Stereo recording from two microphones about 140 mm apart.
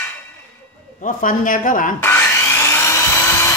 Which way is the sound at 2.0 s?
15° left (ahead or behind).